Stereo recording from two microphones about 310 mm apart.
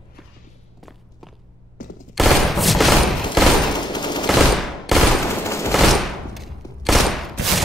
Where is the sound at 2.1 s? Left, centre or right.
Centre.